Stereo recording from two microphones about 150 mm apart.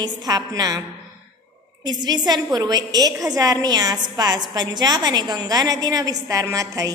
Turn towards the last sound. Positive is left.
turn(degrees=-20)  # may be behind; listen again after turning